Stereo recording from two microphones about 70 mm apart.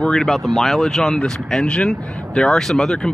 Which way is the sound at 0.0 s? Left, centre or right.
Centre.